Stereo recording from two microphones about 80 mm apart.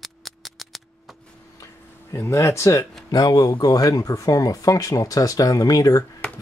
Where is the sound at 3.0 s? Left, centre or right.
Left.